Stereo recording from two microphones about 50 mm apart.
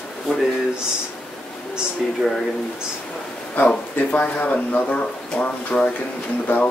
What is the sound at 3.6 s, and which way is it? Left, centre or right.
Speech, left.